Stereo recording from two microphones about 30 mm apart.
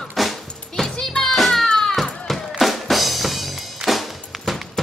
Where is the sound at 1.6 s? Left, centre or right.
Left.